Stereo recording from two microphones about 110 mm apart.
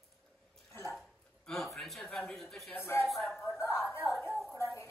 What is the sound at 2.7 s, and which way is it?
Speech, 20° left (ahead or behind).